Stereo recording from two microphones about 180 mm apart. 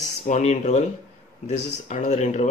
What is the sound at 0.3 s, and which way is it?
Speech, 40° left (ahead or behind).